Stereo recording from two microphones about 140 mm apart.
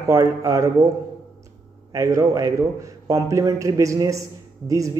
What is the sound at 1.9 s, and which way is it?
A man's voice, 25° right (ahead or behind).